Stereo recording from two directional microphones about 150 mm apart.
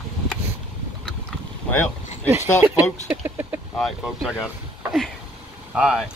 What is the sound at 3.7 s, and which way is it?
Speech, centre (ahead or behind).